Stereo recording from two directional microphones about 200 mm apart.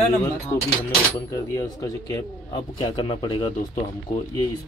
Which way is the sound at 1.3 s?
15° left (ahead or behind).